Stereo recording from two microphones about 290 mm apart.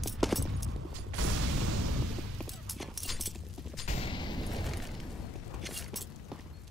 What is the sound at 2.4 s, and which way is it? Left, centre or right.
Clip-clop, centre.